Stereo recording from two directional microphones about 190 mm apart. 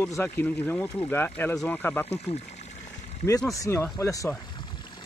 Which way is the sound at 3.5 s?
15° left (ahead or behind).